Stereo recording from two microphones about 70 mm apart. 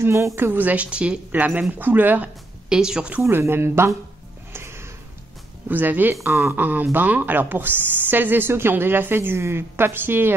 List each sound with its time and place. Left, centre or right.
0.0 s a woman's voice: right
0.4 s speech: right
2.7 s speech: centre
3.3 s speech: right
4.5 s music: right
5.7 s speech: right